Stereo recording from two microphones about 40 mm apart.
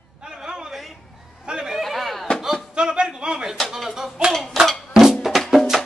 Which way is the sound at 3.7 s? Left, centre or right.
Centre.